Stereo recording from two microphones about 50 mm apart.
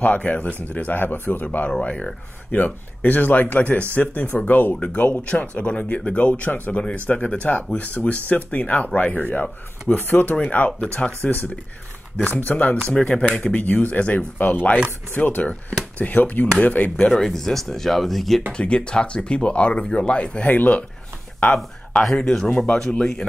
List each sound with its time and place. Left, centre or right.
0.0 s speech: left
1.7 s speech: centre
2.5 s speech: left
12.8 s speech: left
13.5 s speech: left
17.1 s speech: centre
18.5 s speech: left
22.0 s speech: centre